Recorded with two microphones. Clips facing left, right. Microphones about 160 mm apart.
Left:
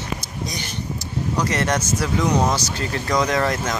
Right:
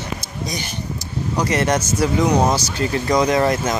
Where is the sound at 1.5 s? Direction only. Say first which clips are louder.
Right 5 dB; 10° right (ahead or behind).